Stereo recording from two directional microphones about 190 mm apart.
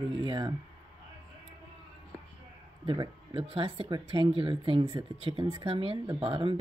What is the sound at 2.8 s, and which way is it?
Speech, 25° right (ahead or behind).